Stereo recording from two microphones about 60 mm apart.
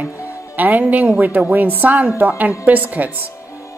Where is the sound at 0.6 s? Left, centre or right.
Right.